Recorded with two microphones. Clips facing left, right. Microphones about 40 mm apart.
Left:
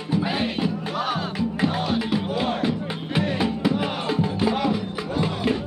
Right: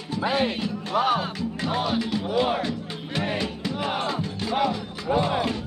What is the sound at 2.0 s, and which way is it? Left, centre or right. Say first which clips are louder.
Music: even; centre.